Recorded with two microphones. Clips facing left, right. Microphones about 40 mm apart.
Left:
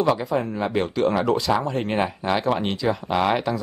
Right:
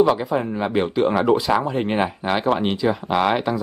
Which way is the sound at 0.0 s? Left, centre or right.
Centre.